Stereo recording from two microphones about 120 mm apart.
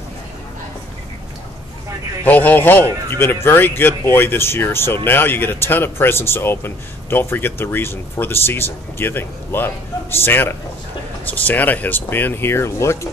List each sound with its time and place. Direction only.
2.2 s speech: 15° left (ahead or behind)